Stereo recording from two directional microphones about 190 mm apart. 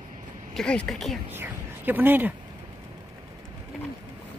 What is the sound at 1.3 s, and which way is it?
Speech, 10° right (ahead or behind).